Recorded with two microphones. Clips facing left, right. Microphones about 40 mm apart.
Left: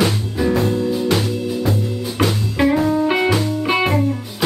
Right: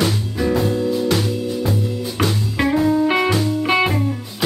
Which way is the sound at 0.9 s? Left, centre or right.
Centre.